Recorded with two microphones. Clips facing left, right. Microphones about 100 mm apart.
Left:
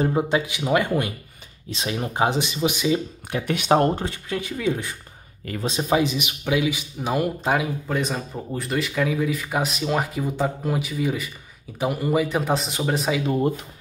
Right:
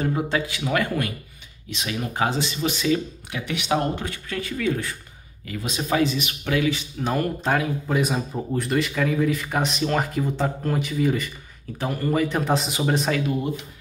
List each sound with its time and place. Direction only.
0.0 s speech: 20° left (ahead or behind)
3.3 s speech: 45° left (ahead or behind)
4.0 s speech: 20° left (ahead or behind)
7.9 s speech: 5° right (ahead or behind)